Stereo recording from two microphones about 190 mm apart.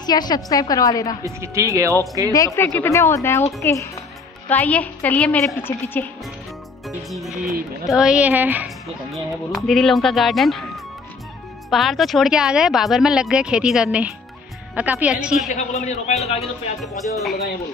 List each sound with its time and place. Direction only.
0.0 s a woman's voice: 20° left (ahead or behind)
1.2 s speech: 15° right (ahead or behind)
2.3 s a woman's voice: 15° left (ahead or behind)
7.0 s speech: centre (ahead or behind)
11.7 s speech: centre (ahead or behind)
15.5 s a man's voice: 35° left (ahead or behind)
16.8 s speech: centre (ahead or behind)